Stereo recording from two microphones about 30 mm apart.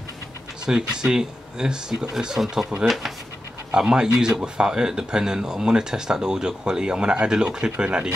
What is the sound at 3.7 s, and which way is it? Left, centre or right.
Speech, right.